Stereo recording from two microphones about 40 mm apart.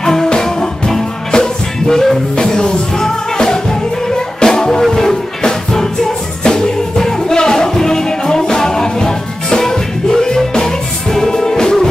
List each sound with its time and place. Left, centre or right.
0.0 s music: centre